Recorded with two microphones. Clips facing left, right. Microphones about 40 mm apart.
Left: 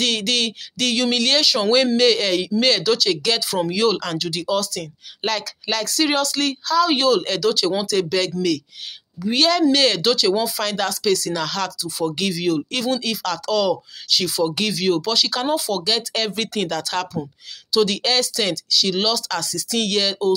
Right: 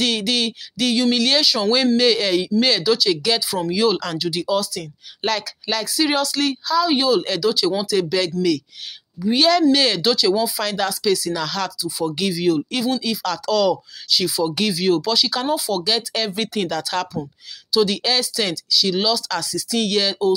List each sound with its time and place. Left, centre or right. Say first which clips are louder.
0.0 s speech: even; left
3.9 s speech: even; left
4.2 s speech: right 1 dB; left
11.3 s speech: even; left
12.7 s speech: right 1 dB; left
13.2 s speech: right 4 dB; left
15.4 s speech: even; left